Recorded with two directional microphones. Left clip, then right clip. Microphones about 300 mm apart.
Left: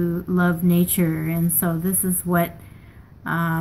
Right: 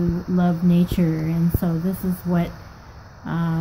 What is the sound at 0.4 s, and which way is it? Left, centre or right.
Speech, centre.